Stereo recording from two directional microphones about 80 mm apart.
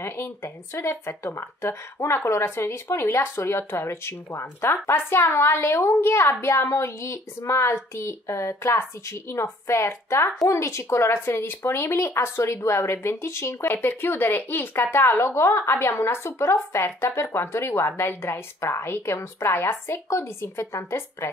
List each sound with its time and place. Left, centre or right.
0.0 s speech: left